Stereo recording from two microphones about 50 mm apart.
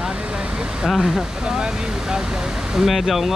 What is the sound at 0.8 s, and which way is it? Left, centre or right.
Speech, centre.